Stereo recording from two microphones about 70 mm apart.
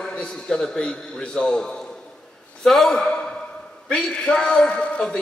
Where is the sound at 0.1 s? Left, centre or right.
Centre.